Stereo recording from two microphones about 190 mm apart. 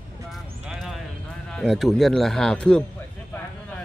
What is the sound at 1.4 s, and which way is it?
Speech, 5° left (ahead or behind).